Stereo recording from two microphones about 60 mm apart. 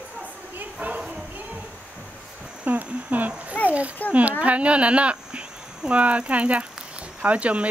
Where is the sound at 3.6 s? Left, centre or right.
Right.